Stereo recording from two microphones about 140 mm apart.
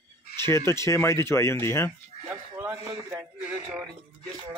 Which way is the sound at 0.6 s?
20° left (ahead or behind).